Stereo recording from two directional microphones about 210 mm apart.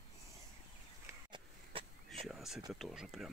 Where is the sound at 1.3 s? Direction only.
25° right (ahead or behind).